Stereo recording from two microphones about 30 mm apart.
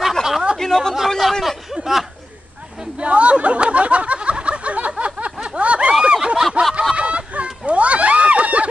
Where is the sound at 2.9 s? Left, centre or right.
Right.